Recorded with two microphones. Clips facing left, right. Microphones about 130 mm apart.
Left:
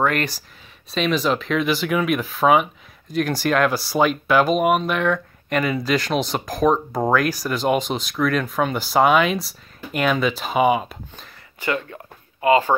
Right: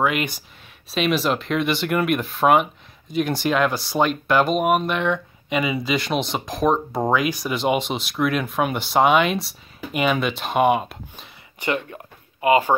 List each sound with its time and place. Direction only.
0.0 s speech: 5° right (ahead or behind)
11.6 s speech: 20° right (ahead or behind)